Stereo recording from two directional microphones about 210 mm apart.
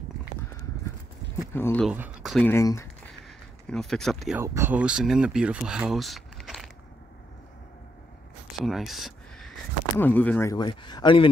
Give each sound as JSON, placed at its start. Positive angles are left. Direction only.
{"t": 1.5, "sound": "speech", "side_deg": 10}
{"t": 1.9, "sound": "speech", "side_deg": -5}
{"t": 2.4, "sound": "speech", "side_deg": 10}
{"t": 3.6, "sound": "speech", "side_deg": 0}
{"t": 4.4, "sound": "speech", "side_deg": -10}
{"t": 8.5, "sound": "a sound", "side_deg": 0}
{"t": 9.9, "sound": "speech", "side_deg": 10}